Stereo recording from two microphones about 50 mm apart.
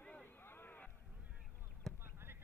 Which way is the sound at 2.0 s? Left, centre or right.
Right.